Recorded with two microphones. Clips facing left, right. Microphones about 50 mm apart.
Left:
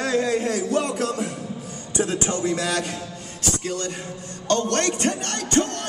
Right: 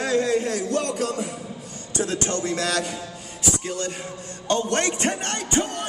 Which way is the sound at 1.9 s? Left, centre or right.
Centre.